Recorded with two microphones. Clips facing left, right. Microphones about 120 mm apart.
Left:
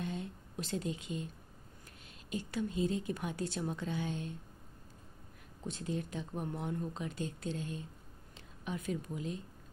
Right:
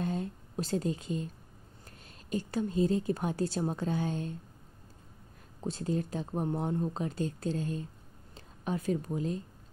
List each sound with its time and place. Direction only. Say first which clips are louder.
0.0 s a sound: right 6 dB; 40° right (ahead or behind)
2.2 s speech: right 5 dB; 40° right (ahead or behind)
5.6 s a woman's voice: right 6 dB; 35° right (ahead or behind)